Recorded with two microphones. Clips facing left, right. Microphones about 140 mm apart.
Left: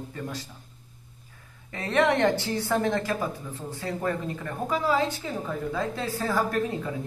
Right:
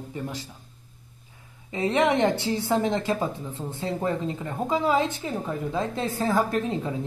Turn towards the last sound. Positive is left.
turn(degrees=-20)  # may be behind; listen again after turning